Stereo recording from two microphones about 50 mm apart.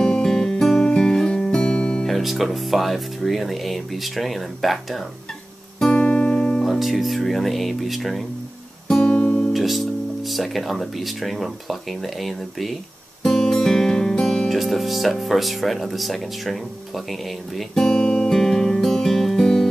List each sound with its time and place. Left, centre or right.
0.0 s music: centre
2.0 s speech: centre
5.9 s music: left
6.6 s speech: centre
9.0 s music: left
9.5 s speech: centre
13.2 s music: centre
14.5 s speech: centre
17.8 s music: centre